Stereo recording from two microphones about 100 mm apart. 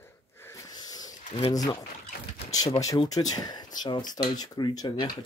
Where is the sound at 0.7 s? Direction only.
40° left (ahead or behind).